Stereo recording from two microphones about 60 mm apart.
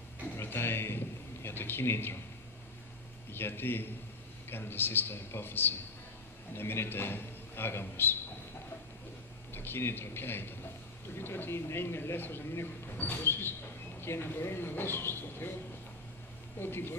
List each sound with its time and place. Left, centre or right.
0.4 s a sound: left
3.3 s a man's voice: left
9.5 s a man's voice: left
16.5 s a man's voice: left